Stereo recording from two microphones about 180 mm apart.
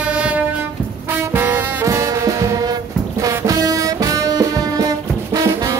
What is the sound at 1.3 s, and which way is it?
Music, 10° right (ahead or behind).